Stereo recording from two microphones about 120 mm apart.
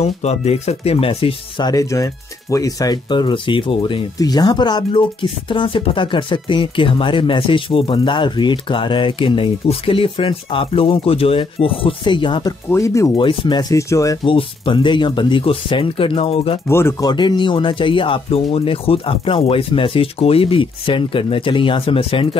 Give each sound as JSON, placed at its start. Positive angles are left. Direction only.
{"t": 0.0, "sound": "speech", "side_deg": 65}
{"t": 1.6, "sound": "speech", "side_deg": 30}
{"t": 4.2, "sound": "speech", "side_deg": 35}
{"t": 12.6, "sound": "speech", "side_deg": 25}
{"t": 13.2, "sound": "speech", "side_deg": 45}
{"t": 13.7, "sound": "speech", "side_deg": 25}
{"t": 14.2, "sound": "speech", "side_deg": 45}
{"t": 16.6, "sound": "speech", "side_deg": 20}
{"t": 17.0, "sound": "speech", "side_deg": 35}